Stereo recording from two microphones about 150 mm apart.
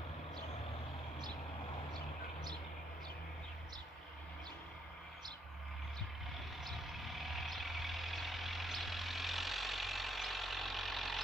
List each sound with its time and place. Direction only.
6.6 s vehicle: centre (ahead or behind)